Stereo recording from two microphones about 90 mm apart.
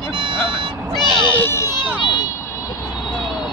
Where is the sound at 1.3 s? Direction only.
25° left (ahead or behind).